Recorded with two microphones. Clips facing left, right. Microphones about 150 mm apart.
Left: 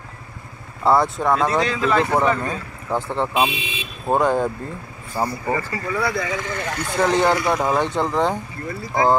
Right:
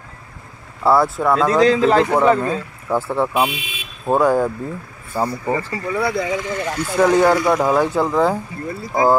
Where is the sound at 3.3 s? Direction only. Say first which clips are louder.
Right 1 dB; 20° left (ahead or behind).